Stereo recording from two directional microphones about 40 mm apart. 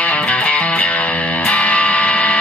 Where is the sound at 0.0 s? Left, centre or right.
Left.